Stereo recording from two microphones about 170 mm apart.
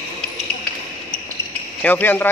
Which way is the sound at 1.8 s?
10° left (ahead or behind).